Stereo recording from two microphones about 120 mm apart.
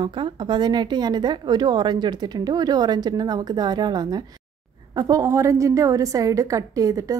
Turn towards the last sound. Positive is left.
turn(degrees=-30)  # may be behind; listen again after turning